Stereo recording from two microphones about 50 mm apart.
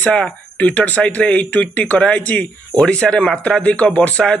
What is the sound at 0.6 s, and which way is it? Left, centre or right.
Speech, left.